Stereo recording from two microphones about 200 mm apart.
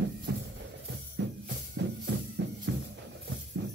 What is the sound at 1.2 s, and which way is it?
Music, 65° right (ahead or behind).